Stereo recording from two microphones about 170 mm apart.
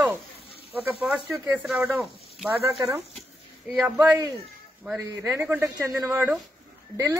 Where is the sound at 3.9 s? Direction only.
15° right (ahead or behind).